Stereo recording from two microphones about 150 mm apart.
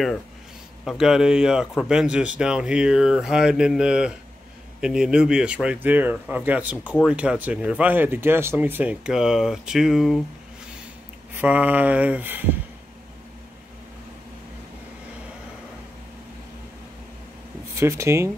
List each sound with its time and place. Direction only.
0.8 s speech: 5° right (ahead or behind)
11.3 s speech: 10° right (ahead or behind)
17.7 s speech: 20° right (ahead or behind)